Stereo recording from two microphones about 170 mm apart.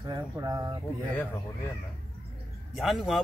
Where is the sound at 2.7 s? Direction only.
Centre (ahead or behind).